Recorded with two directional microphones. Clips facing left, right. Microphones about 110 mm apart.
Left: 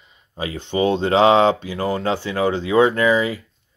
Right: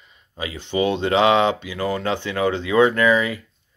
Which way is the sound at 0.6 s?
30° left (ahead or behind).